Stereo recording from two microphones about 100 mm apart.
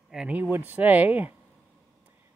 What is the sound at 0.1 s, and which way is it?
Speech, 5° right (ahead or behind).